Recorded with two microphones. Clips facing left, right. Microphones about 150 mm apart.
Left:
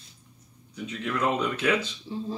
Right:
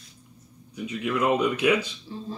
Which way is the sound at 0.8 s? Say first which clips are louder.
Right 3 dB; 10° right (ahead or behind).